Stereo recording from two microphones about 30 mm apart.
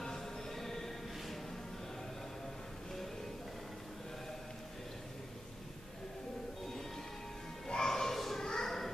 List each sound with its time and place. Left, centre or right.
0.0 s music: centre
7.6 s children playing: centre